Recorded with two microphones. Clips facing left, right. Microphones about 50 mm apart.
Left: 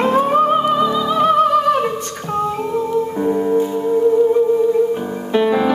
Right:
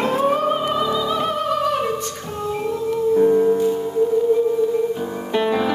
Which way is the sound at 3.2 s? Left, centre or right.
Centre.